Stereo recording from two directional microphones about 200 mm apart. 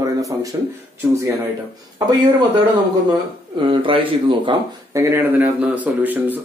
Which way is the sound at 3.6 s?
25° right (ahead or behind).